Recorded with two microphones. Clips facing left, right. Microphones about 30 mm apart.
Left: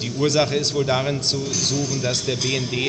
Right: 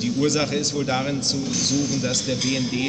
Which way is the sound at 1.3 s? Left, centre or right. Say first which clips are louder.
Even; left.